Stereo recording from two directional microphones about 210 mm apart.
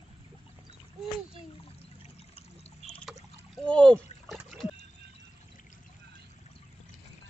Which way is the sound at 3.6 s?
5° left (ahead or behind).